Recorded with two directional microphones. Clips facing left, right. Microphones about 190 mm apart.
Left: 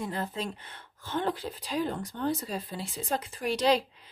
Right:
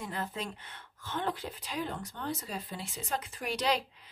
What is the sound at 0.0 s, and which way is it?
Speech, 30° left (ahead or behind).